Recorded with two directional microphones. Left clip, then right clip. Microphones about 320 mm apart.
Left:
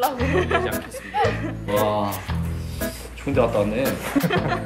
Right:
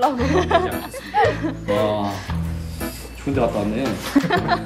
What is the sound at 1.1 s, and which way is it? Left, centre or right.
Music, right.